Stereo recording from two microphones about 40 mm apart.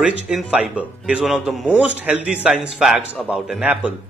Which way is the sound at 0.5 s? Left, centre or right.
Right.